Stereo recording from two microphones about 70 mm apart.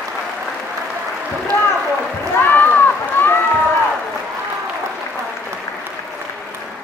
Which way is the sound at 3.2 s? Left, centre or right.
Left.